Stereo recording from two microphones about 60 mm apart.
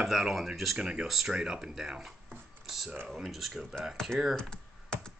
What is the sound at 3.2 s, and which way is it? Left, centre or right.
Speech, centre.